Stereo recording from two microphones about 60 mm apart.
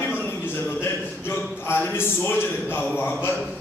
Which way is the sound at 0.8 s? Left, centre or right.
Left.